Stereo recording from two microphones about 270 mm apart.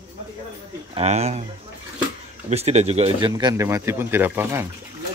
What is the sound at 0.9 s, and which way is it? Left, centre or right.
Speech, right.